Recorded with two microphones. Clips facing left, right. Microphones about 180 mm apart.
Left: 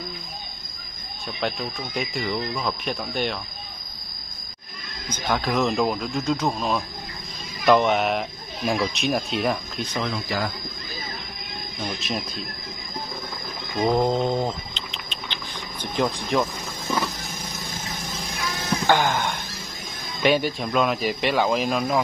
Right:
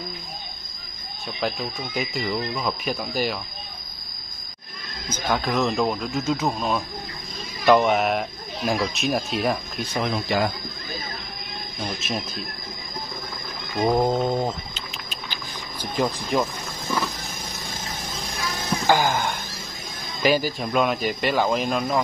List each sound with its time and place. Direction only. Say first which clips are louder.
1.4 s speech: right 1 dB; centre (ahead or behind)
5.1 s speech: even; centre (ahead or behind)
10.1 s speech: right 4 dB; 20° right (ahead or behind)
12.0 s speech: even; centre (ahead or behind)
13.8 s a sound: even; 5° right (ahead or behind)
15.8 s speech: even; 5° right (ahead or behind)
18.9 s speech: right 1 dB; 5° right (ahead or behind)